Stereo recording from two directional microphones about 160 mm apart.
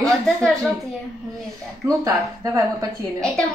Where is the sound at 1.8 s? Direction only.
20° right (ahead or behind).